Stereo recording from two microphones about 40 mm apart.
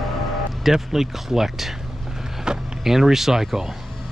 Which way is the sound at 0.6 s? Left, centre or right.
Centre.